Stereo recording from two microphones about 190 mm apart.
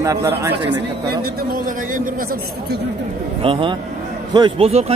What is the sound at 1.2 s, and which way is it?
Speech, 50° right (ahead or behind).